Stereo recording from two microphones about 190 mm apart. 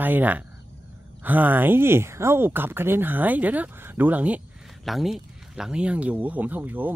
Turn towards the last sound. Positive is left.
turn(degrees=-10)  # may be behind; listen again after turning